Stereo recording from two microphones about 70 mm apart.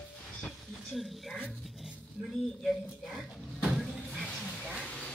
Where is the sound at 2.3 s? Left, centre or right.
Centre.